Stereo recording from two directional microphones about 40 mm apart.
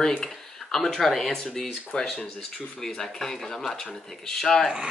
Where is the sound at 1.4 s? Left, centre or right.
Centre.